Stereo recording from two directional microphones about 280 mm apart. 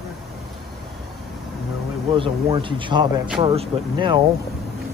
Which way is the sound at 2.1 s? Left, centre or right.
Centre.